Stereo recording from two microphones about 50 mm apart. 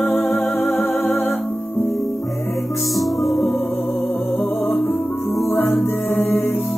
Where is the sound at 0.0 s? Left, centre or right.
Left.